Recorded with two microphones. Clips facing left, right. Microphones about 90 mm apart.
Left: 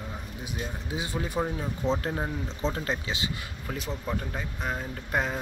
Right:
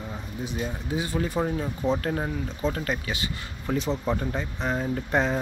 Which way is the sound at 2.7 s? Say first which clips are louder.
Right 2 dB; 20° left (ahead or behind).